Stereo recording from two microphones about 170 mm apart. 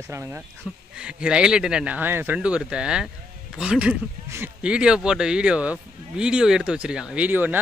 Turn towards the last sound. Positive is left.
turn(degrees=-10)  # may be behind; listen again after turning